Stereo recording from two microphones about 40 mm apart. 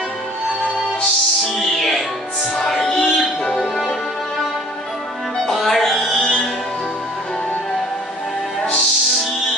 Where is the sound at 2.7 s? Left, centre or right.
Centre.